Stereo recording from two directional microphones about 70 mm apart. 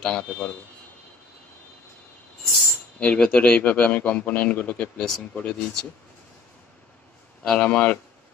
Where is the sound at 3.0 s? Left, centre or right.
Centre.